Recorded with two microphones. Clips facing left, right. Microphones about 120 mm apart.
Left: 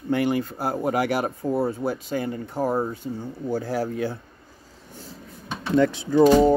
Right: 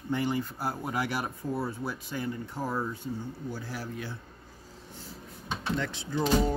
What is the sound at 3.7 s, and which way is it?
Speech, 90° left.